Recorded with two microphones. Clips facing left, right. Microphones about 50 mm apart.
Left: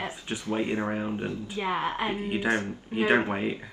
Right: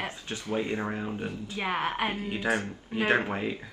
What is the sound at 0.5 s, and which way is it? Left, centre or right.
Speech, left.